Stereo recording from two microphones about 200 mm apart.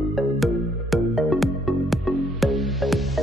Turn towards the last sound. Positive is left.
turn(degrees=0)  # may be behind; listen again after turning